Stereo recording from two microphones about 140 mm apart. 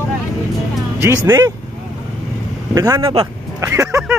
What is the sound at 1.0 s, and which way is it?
Speech, 20° right (ahead or behind).